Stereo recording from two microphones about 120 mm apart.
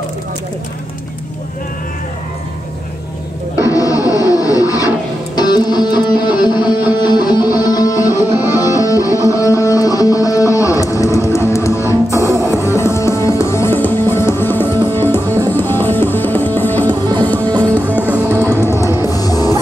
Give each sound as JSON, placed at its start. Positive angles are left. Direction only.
{"t": 3.6, "sound": "music", "side_deg": 30}
{"t": 17.5, "sound": "music", "side_deg": -35}
{"t": 18.0, "sound": "music", "side_deg": -15}
{"t": 18.5, "sound": "music", "side_deg": 20}